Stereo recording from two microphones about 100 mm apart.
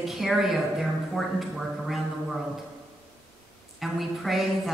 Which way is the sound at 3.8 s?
Centre (ahead or behind).